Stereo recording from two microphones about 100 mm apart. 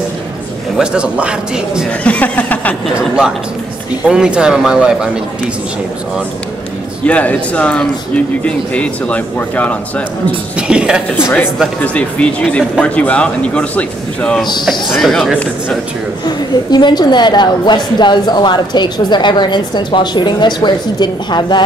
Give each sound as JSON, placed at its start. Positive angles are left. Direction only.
{"t": 0.7, "sound": "a man's voice", "side_deg": -10}
{"t": 2.0, "sound": "speech", "side_deg": 15}
{"t": 3.0, "sound": "a man's voice", "side_deg": -5}
{"t": 7.1, "sound": "speech", "side_deg": 15}
{"t": 10.7, "sound": "a man's voice", "side_deg": -10}
{"t": 11.8, "sound": "a man's voice", "side_deg": 10}
{"t": 16.3, "sound": "a woman's voice", "side_deg": 45}